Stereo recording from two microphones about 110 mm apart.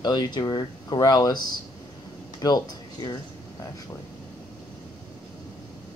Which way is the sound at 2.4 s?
35° left (ahead or behind).